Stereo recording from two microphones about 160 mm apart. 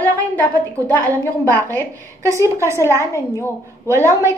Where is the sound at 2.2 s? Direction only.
20° right (ahead or behind).